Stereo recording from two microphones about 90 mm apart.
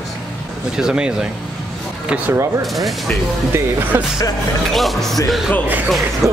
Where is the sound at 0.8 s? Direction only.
10° right (ahead or behind).